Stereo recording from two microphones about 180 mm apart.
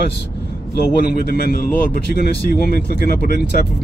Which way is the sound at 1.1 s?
60° left (ahead or behind).